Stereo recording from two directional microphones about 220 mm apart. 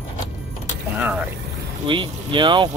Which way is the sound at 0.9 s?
5° right (ahead or behind).